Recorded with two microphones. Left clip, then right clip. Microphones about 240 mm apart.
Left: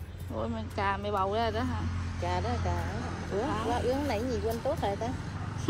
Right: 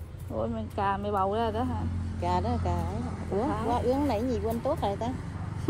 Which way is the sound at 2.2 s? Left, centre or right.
Right.